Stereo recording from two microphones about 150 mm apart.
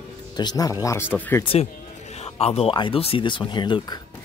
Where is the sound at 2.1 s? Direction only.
45° left (ahead or behind).